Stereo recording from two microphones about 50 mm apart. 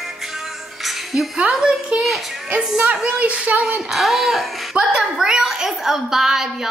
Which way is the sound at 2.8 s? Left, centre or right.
Right.